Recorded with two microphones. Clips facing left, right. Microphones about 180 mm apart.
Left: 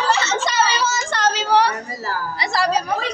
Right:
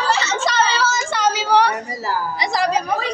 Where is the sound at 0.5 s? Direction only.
15° left (ahead or behind).